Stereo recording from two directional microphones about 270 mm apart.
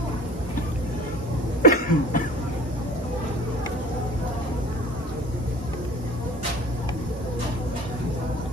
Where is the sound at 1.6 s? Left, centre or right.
Left.